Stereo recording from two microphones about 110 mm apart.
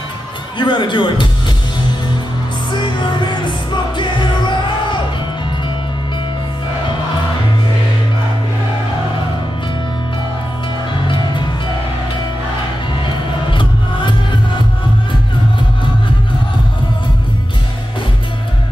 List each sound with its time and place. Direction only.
0.6 s a man's voice: 45° left (ahead or behind)
2.7 s music: 45° left (ahead or behind)
13.5 s music: 45° left (ahead or behind)